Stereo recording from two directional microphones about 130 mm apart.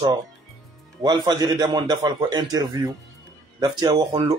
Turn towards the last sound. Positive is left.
turn(degrees=-30)  # may be behind; listen again after turning